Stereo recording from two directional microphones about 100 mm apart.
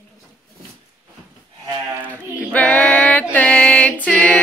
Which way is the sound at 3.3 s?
15° left (ahead or behind).